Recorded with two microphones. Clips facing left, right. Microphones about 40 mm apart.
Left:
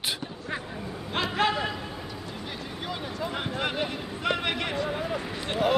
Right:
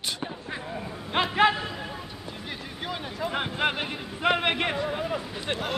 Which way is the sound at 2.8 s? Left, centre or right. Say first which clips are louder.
Right 2 dB; centre.